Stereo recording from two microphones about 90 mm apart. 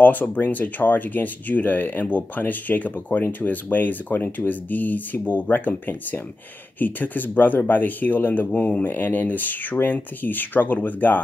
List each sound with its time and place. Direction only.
0.0 s speech: 20° left (ahead or behind)